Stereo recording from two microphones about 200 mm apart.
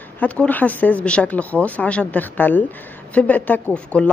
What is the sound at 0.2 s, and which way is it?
A woman's voice, 10° left (ahead or behind).